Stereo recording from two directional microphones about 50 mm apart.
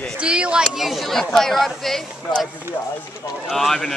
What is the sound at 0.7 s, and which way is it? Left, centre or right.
Speech, centre.